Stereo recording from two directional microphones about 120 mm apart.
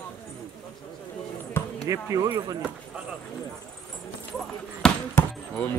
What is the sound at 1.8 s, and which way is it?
Speech, 30° right (ahead or behind).